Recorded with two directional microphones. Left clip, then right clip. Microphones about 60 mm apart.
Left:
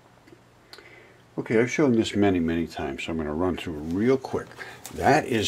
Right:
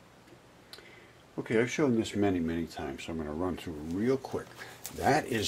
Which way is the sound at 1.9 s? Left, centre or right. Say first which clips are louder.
Left 7 dB; centre.